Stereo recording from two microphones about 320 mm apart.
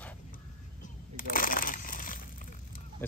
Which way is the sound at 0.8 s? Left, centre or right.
Left.